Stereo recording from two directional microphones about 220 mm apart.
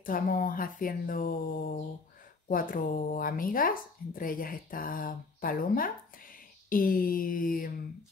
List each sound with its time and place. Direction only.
0.0 s speech: 40° left (ahead or behind)